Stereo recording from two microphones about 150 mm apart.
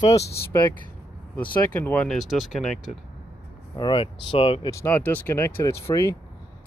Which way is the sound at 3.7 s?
30° left (ahead or behind).